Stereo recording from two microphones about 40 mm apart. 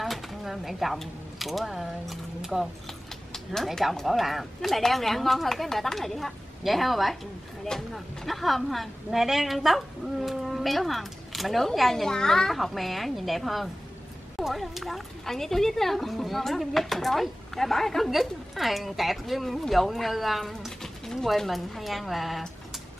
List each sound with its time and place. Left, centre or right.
0.0 s a sound: centre
1.7 s speech: centre
4.0 s speech: centre
7.7 s a child's voice: centre
8.3 s speech: centre
11.9 s a child's voice: centre
12.5 s speech: centre
20.8 s a sound: centre
21.5 s speech: centre